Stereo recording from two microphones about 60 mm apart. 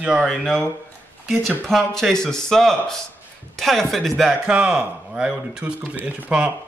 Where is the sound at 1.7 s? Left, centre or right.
Centre.